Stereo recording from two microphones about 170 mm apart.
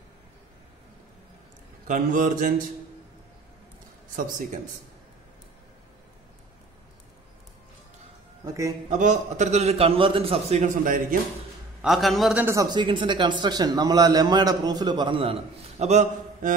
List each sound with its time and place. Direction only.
1.9 s a man's voice: 50° right (ahead or behind)
4.2 s a man's voice: 50° right (ahead or behind)
8.8 s a man's voice: 45° right (ahead or behind)
10.8 s a man's voice: 50° right (ahead or behind)
11.8 s a man's voice: centre (ahead or behind)
12.4 s a man's voice: 20° right (ahead or behind)
15.8 s a man's voice: 40° right (ahead or behind)